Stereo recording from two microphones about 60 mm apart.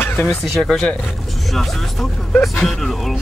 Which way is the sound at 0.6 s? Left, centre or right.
Centre.